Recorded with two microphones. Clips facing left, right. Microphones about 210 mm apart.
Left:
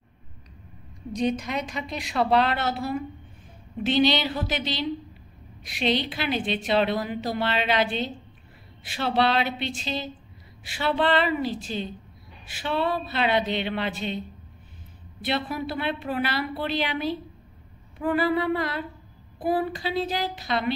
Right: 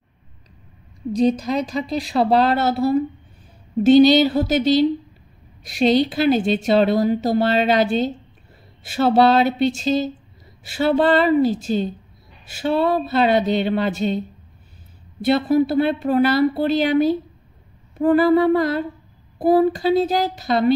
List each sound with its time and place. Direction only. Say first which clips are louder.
1.1 s a woman's voice: right 8 dB; 35° right (ahead or behind)
15.2 s a woman's voice: right 12 dB; 45° right (ahead or behind)